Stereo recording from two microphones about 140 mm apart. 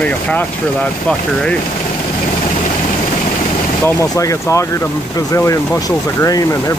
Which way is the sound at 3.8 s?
20° left (ahead or behind).